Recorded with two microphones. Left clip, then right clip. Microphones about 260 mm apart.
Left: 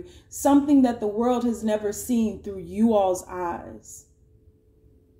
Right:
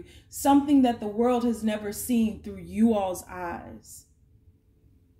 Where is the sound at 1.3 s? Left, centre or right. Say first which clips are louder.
Left 3 dB; right.